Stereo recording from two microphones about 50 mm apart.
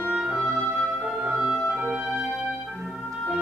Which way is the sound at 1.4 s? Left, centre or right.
Centre.